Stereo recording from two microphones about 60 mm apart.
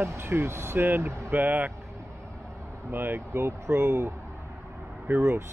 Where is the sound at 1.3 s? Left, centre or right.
Right.